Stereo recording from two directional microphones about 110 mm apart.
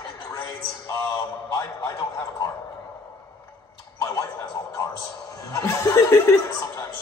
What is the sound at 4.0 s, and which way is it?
Television, 30° left (ahead or behind).